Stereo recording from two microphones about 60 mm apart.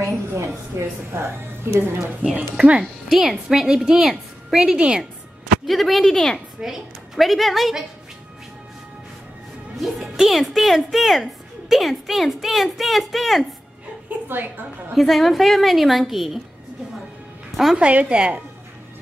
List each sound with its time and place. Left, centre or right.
0.0 s a woman's voice: right
2.8 s a woman's voice: centre
5.7 s a woman's voice: centre
6.6 s a woman's voice: centre
9.8 s a woman's voice: centre
14.0 s a woman's voice: right
15.0 s a woman's voice: centre
17.7 s a woman's voice: centre